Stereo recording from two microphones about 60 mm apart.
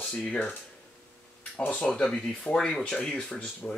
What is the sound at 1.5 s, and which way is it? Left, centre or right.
Speech, centre.